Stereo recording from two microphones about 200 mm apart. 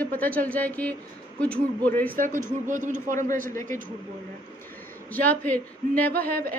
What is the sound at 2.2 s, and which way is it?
A man's voice, 40° right (ahead or behind).